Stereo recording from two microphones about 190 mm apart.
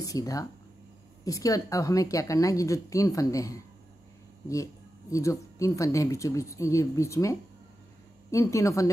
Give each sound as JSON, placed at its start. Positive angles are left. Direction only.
{"t": 0.0, "sound": "a woman's voice", "side_deg": 20}
{"t": 5.1, "sound": "a woman's voice", "side_deg": 15}